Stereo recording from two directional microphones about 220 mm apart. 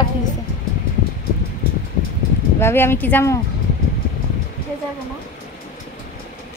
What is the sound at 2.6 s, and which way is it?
Speech, 10° left (ahead or behind).